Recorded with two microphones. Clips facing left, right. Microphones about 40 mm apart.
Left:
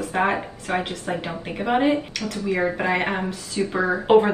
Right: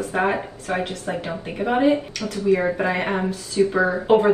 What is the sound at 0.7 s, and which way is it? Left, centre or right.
Speech, left.